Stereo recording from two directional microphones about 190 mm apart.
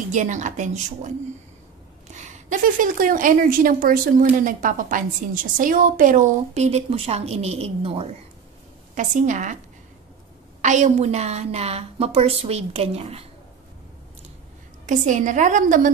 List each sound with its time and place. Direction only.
0.1 s a woman's voice: 40° right (ahead or behind)
2.1 s a woman's voice: 40° right (ahead or behind)
8.9 s a woman's voice: 40° right (ahead or behind)
10.6 s a woman's voice: 40° right (ahead or behind)
14.9 s a woman's voice: 40° right (ahead or behind)